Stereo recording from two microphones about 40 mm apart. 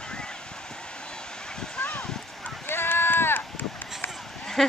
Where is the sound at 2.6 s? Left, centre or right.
Left.